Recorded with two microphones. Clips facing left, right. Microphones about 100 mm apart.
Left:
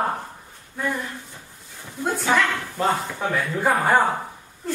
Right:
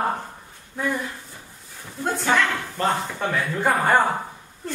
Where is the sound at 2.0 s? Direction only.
Centre (ahead or behind).